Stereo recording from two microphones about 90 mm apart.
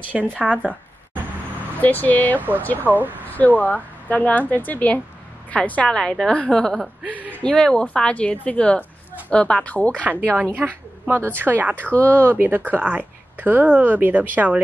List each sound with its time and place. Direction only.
0.1 s speech: 5° right (ahead or behind)
1.8 s speech: 20° left (ahead or behind)
2.8 s speech: 20° right (ahead or behind)
3.3 s a woman's voice: 20° left (ahead or behind)
7.0 s speech: 15° right (ahead or behind)
7.4 s a woman's voice: 5° left (ahead or behind)
10.3 s speech: 15° right (ahead or behind)
11.7 s a woman's voice: 15° left (ahead or behind)
12.2 s speech: 25° right (ahead or behind)